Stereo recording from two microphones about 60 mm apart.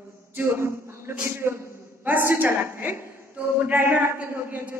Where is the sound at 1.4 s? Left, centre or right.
Right.